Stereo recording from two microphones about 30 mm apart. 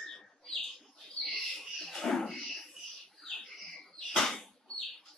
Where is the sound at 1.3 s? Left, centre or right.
Centre.